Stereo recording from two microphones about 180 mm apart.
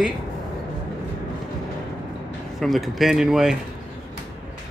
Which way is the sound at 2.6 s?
Centre (ahead or behind).